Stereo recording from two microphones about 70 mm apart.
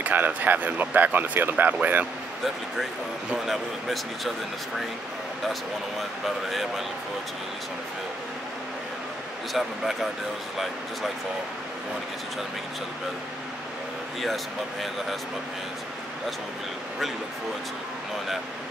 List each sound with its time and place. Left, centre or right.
0.0 s speech: right
3.4 s speech: centre
5.5 s speech: centre
9.5 s speech: centre
14.2 s speech: centre